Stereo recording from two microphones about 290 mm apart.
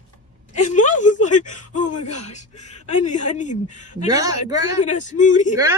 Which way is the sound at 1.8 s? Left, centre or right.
Left.